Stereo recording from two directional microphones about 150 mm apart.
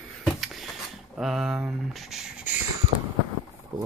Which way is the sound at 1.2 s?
5° right (ahead or behind).